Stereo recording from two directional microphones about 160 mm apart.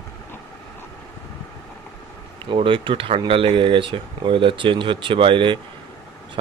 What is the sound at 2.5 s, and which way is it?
Speech, 35° right (ahead or behind).